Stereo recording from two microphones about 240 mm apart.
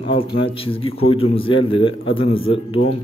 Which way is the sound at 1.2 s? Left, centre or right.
Left.